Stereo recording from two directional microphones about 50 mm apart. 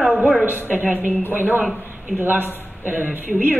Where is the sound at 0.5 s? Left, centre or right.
Right.